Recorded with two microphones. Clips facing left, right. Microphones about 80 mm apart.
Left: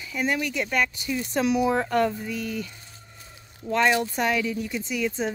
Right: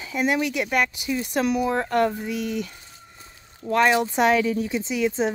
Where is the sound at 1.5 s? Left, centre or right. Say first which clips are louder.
Left 2 dB; centre.